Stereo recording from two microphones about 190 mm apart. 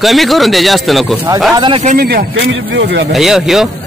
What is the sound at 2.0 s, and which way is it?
Speech, 55° right (ahead or behind).